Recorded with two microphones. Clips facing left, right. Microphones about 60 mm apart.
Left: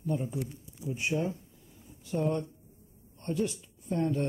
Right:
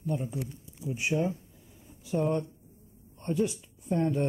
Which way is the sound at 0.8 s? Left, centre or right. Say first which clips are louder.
Right 2 dB; centre.